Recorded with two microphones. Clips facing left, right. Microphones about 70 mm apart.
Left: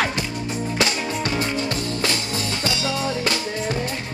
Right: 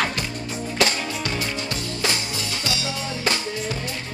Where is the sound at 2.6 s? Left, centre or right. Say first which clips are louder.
Left 3 dB; left.